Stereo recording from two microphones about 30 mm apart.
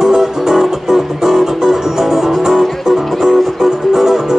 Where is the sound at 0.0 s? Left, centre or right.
Centre.